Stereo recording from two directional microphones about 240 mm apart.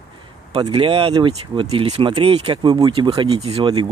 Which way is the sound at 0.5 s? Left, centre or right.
Right.